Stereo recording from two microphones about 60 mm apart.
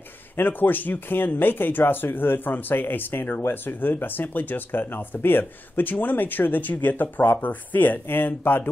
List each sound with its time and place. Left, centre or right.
0.4 s speech: left